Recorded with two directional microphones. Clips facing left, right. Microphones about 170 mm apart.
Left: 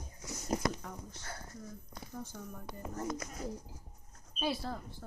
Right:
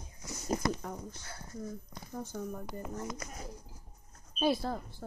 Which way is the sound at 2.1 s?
45° right (ahead or behind).